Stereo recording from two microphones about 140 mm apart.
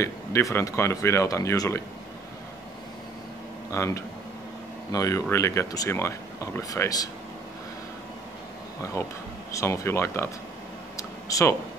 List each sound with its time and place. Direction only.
0.0 s speech: 20° left (ahead or behind)
3.7 s speech: 20° left (ahead or behind)
9.0 s speech: 20° left (ahead or behind)
11.0 s a sound: 25° left (ahead or behind)